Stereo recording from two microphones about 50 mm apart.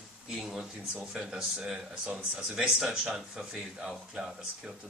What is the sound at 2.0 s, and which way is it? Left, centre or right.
Speech, right.